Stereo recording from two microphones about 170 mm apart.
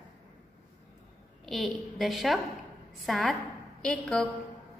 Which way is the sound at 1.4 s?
Centre (ahead or behind).